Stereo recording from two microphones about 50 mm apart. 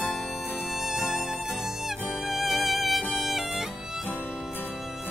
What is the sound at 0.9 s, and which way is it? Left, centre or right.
Music, centre.